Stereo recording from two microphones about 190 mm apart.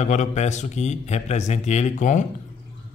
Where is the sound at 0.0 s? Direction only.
40° left (ahead or behind).